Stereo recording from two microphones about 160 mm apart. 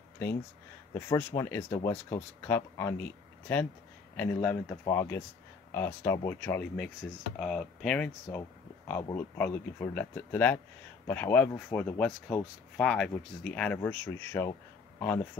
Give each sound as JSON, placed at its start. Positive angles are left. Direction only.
{"t": 0.9, "sound": "speech", "side_deg": 20}